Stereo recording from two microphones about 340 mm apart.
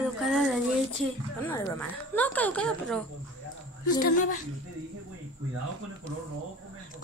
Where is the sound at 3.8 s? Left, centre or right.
Left.